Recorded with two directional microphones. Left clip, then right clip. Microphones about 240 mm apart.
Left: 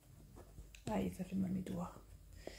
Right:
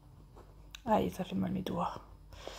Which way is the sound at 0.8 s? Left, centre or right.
Right.